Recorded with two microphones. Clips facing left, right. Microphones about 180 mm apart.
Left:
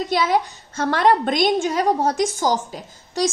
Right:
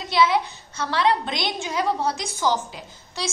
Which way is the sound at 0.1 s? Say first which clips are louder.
Right 2 dB; 45° left (ahead or behind).